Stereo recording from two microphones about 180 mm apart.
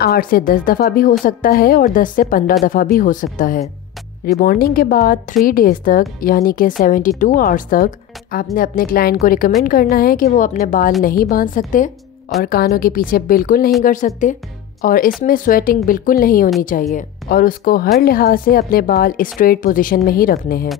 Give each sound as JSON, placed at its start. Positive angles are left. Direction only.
{"t": 0.0, "sound": "a woman's voice", "side_deg": 55}